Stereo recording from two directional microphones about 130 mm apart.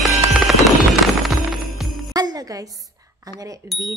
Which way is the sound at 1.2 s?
Centre (ahead or behind).